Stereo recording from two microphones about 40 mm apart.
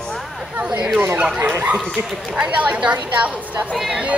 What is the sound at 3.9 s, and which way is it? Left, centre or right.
Speech, right.